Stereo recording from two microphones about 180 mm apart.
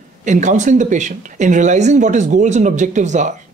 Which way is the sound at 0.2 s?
45° right (ahead or behind).